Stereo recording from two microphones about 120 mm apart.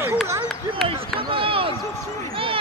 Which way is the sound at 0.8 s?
50° right (ahead or behind).